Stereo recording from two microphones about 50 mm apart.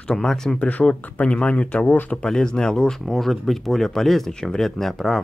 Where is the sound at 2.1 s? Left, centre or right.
Centre.